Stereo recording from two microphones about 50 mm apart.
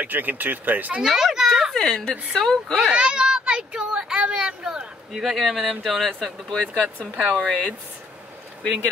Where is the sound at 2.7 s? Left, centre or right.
Centre.